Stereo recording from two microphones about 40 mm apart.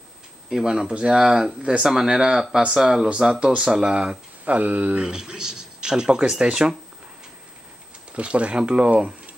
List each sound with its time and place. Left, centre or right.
0.5 s speech: centre
1.6 s speech: right
1.9 s speech: centre
3.1 s speech: right
3.9 s speech: right
4.6 s speech: right
4.9 s speech: centre
8.1 s speech: right